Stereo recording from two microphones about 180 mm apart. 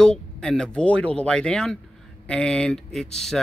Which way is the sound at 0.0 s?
5° left (ahead or behind).